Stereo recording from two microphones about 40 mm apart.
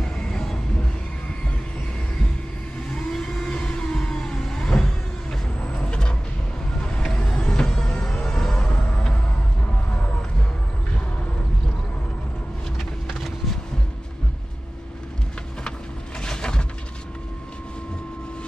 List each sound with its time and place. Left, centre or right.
0.0 s vehicle: centre
3.1 s a sound: centre
5.7 s vehicle: left
16.2 s pigeon: centre